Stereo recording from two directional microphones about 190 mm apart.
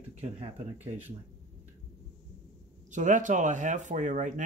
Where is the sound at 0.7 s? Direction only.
10° right (ahead or behind).